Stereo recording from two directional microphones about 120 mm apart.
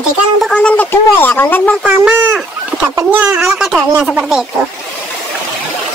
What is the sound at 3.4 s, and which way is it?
Speech, 5° right (ahead or behind).